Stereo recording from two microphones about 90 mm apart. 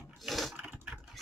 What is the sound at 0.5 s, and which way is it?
Typing, 15° right (ahead or behind).